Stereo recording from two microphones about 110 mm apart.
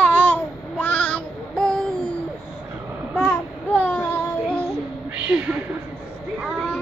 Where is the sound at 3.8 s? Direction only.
15° left (ahead or behind).